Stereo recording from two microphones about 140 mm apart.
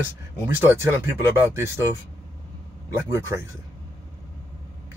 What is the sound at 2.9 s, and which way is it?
Speech, 20° right (ahead or behind).